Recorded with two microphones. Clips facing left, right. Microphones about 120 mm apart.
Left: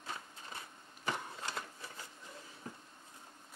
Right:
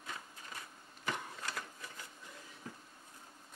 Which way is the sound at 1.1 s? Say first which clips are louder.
Left 1 dB; 30° left (ahead or behind).